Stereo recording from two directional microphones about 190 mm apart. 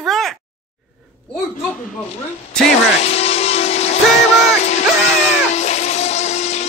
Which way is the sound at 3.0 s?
35° left (ahead or behind).